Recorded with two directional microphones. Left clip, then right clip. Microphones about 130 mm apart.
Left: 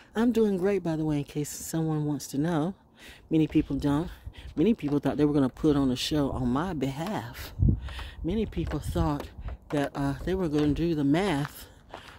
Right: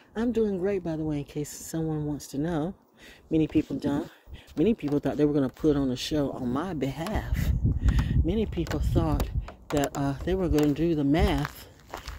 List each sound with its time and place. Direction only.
0.1 s speech: 65° left (ahead or behind); by 11.4 s 25° left (ahead or behind)